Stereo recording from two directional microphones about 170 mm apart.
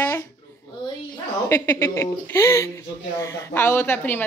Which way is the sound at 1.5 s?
15° left (ahead or behind).